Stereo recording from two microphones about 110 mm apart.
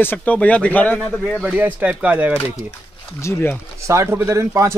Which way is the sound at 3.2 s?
20° left (ahead or behind).